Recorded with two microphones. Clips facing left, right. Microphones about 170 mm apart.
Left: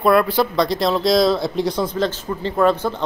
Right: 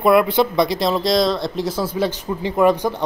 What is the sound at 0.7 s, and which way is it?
A man's voice, centre (ahead or behind).